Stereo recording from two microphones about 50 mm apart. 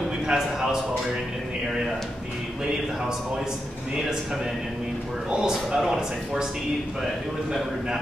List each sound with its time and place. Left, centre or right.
0.3 s speech: centre
5.3 s speech: centre